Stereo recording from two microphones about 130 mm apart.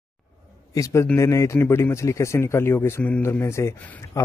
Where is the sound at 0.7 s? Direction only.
25° left (ahead or behind).